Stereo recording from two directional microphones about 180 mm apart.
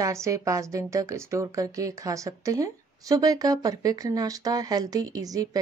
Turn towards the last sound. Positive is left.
turn(degrees=-20)  # may be behind; listen again after turning